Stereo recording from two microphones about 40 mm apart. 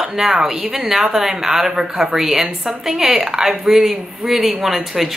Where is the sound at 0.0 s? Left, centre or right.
Centre.